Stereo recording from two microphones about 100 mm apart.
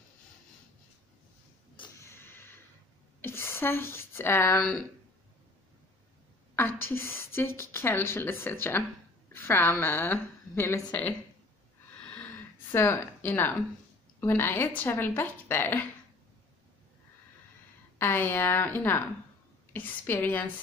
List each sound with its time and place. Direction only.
2.0 s a sound: 25° left (ahead or behind)
4.6 s speech: 10° left (ahead or behind)
6.5 s a woman's voice: 20° left (ahead or behind)
12.0 s a sound: 15° left (ahead or behind)
12.7 s a woman's voice: 20° left (ahead or behind)
17.9 s a woman's voice: 20° left (ahead or behind)